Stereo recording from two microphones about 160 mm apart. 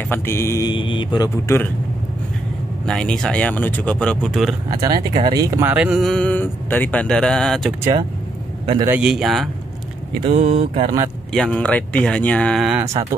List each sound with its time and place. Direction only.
0.1 s speech: 15° left (ahead or behind)
2.9 s speech: 5° left (ahead or behind)
4.7 s speech: 25° right (ahead or behind); by 7.7 s 5° left (ahead or behind)
8.8 s speech: 10° right (ahead or behind)
10.2 s speech: 40° right (ahead or behind)
11.3 s speech: 5° left (ahead or behind)